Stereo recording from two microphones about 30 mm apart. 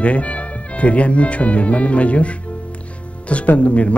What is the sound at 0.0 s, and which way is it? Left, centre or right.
Speech, left.